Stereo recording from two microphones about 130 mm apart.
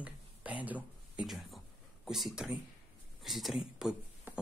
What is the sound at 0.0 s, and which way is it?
Whispering, 10° right (ahead or behind).